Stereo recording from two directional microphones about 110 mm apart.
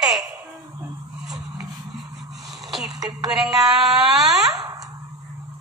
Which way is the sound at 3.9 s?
5° right (ahead or behind).